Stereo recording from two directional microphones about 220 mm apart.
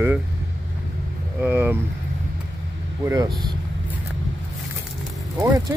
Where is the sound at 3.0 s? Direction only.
15° right (ahead or behind).